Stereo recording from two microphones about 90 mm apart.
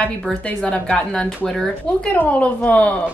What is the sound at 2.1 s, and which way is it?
Speech, 15° left (ahead or behind).